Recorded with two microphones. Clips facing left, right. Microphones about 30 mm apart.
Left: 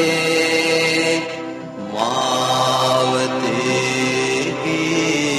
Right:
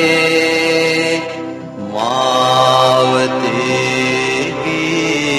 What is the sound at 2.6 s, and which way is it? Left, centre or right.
Mantra, right.